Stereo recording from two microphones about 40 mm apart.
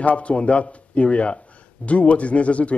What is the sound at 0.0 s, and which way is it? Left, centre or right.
Speech, left.